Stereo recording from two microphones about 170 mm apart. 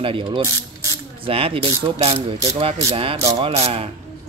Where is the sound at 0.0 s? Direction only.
30° right (ahead or behind).